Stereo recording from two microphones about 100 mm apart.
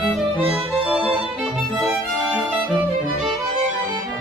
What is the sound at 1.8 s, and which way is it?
Music, 10° right (ahead or behind).